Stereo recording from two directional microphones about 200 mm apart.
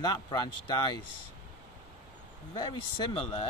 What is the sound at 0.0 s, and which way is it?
Speech, 20° left (ahead or behind).